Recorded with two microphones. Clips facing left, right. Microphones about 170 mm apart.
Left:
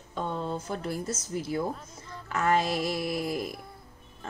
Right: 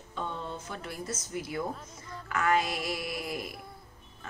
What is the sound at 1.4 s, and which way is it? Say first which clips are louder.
Music: left 4 dB; 30° left (ahead or behind).